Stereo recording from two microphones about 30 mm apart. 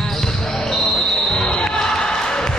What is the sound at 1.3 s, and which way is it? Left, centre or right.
Basketball bounce, left.